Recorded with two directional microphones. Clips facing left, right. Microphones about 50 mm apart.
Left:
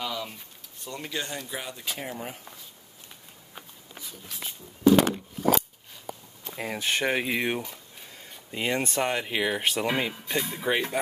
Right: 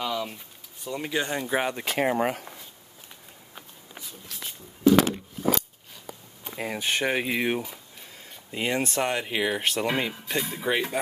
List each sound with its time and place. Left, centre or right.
0.0 s speech: centre
1.0 s speech: centre
1.5 s speech: right
2.0 s speech: right
4.3 s walk: centre
6.5 s speech: centre